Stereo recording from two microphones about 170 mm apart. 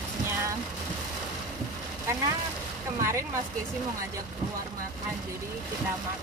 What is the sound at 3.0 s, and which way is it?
Speech, 15° right (ahead or behind).